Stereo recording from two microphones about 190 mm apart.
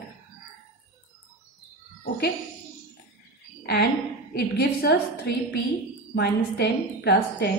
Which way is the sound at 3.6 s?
60° left (ahead or behind).